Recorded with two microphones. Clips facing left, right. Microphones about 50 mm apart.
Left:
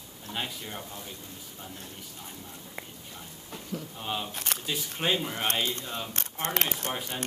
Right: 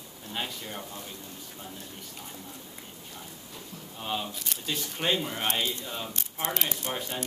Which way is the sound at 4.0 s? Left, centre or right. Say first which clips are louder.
Right 3 dB; centre.